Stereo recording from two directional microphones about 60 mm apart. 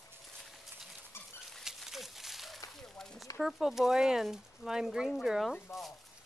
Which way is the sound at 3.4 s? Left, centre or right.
Centre.